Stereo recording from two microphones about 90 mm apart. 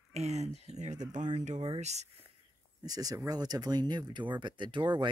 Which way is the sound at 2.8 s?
45° right (ahead or behind).